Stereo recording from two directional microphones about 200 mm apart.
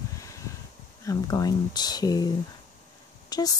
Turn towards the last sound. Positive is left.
turn(degrees=20)  # may be behind; listen again after turning